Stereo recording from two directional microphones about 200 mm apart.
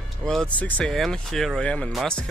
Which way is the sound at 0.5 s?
10° left (ahead or behind).